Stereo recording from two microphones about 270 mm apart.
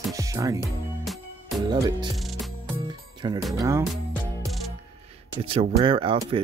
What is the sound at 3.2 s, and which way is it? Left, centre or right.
Speech, centre.